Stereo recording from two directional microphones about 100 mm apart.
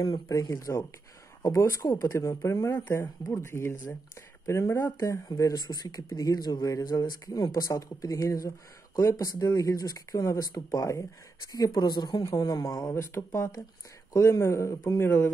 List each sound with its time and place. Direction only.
0.0 s speech: 40° left (ahead or behind)
5.4 s speech: 45° left (ahead or behind)
12.9 s speech: 25° left (ahead or behind)